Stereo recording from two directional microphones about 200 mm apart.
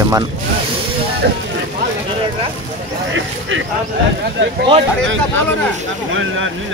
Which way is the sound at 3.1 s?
70° right (ahead or behind).